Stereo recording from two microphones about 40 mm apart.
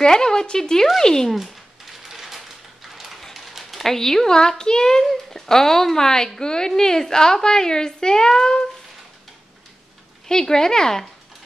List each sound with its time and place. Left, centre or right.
0.0 s speech: centre
1.3 s a sound: centre
3.3 s speech: centre
10.2 s speech: centre